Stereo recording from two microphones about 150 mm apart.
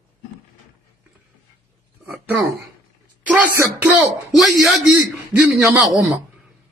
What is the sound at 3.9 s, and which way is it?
Speech, centre (ahead or behind).